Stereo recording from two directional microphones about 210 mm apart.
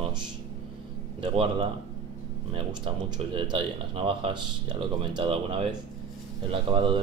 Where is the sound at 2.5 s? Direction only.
25° right (ahead or behind).